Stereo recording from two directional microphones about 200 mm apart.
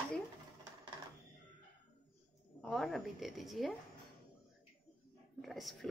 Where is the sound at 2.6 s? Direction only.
Centre (ahead or behind).